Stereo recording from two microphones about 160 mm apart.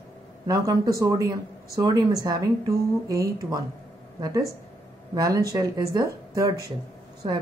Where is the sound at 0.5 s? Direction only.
20° right (ahead or behind).